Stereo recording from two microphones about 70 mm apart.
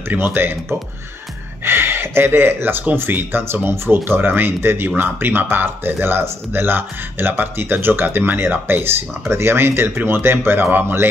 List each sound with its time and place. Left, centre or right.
0.1 s speech: right